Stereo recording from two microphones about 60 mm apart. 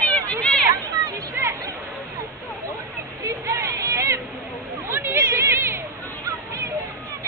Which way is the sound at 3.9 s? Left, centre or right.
Right.